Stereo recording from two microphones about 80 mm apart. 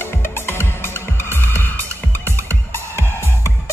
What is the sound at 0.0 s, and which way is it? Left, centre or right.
Music, left.